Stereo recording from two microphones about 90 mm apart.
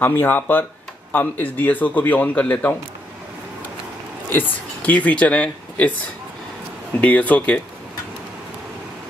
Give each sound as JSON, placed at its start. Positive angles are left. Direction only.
{"t": 0.0, "sound": "a man's voice", "side_deg": 25}
{"t": 4.3, "sound": "speech", "side_deg": 20}
{"t": 7.0, "sound": "speech", "side_deg": 15}